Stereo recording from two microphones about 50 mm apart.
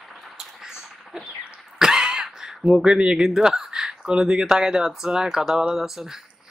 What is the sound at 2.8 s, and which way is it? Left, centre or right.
Speech, centre.